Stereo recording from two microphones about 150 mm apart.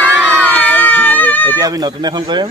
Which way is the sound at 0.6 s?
10° left (ahead or behind).